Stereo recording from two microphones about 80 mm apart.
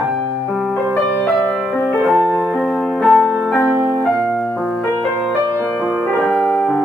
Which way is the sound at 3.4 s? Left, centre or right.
Centre.